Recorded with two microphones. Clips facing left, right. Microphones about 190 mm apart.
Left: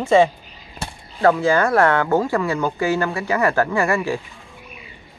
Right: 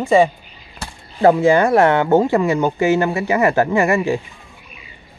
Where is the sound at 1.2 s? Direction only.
20° right (ahead or behind).